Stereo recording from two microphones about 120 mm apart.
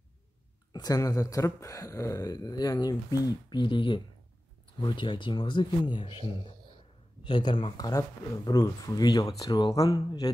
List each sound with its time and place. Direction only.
0.7 s speech: 30° left (ahead or behind)
7.2 s speech: 40° left (ahead or behind)